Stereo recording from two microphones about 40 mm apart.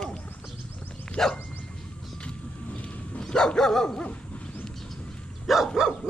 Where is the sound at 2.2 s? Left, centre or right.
Left.